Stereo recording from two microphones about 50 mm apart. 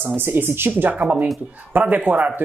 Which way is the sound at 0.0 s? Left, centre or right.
Right.